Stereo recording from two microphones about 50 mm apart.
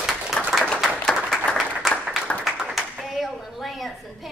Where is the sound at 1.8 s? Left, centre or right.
Centre.